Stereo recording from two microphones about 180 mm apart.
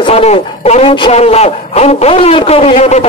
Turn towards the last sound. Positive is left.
turn(degrees=40)  # may be behind; listen again after turning